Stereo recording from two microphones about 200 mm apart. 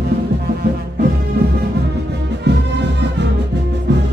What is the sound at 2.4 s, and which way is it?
Music, 60° right (ahead or behind).